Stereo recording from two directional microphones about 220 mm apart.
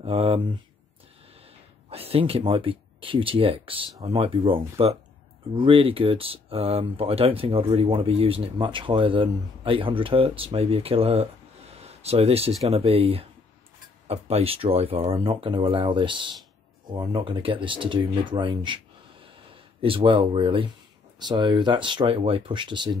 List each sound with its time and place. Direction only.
0.0 s speech: 25° right (ahead or behind)
1.9 s speech: 25° right (ahead or behind)
19.8 s speech: 25° right (ahead or behind)